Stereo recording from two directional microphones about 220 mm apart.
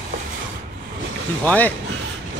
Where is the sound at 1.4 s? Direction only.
5° left (ahead or behind).